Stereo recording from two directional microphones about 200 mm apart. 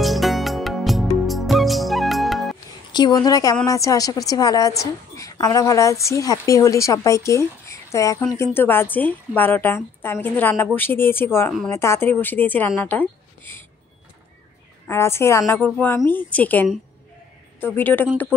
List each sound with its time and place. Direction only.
0.0 s music: centre (ahead or behind)
2.9 s a woman's voice: 20° left (ahead or behind)
14.9 s a woman's voice: 15° left (ahead or behind)